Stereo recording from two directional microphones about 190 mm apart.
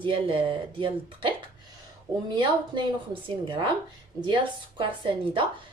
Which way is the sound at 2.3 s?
25° right (ahead or behind).